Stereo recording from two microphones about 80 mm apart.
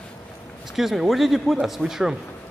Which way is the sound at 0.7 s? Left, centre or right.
Centre.